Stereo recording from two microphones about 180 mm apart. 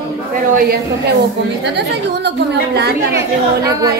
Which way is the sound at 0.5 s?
55° right (ahead or behind).